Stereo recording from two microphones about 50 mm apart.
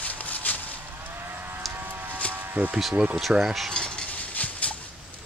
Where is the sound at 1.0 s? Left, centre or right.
Right.